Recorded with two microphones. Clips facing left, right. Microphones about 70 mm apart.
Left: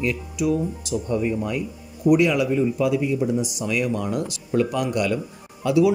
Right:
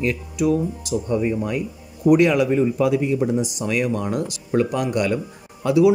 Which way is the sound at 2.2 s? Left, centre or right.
Right.